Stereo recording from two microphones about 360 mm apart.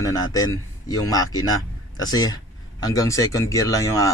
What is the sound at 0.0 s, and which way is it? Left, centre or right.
Speech, centre.